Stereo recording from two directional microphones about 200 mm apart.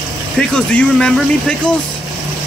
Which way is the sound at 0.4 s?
5° left (ahead or behind).